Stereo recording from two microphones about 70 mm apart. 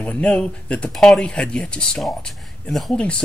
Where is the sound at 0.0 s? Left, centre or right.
Centre.